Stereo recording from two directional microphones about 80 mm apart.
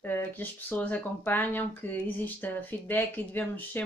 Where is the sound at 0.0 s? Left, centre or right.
Left.